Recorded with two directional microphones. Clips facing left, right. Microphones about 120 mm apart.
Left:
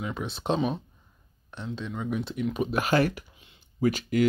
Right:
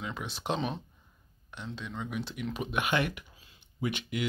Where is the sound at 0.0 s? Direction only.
20° left (ahead or behind).